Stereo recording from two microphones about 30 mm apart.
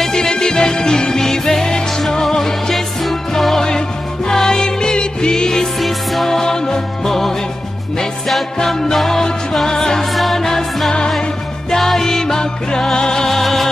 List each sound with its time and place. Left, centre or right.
0.0 s music: left
3.0 s music: centre
4.3 s music: left
5.8 s music: centre
8.5 s music: centre